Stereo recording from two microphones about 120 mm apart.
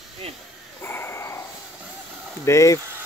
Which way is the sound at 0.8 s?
20° left (ahead or behind).